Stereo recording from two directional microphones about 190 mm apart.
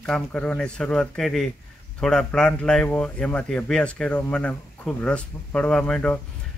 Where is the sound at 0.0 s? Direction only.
5° left (ahead or behind).